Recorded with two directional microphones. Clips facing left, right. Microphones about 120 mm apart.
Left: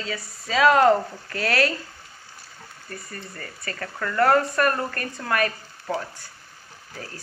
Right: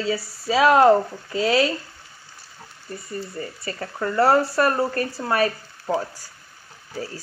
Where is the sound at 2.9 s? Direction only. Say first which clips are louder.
Right 7 dB; 25° right (ahead or behind).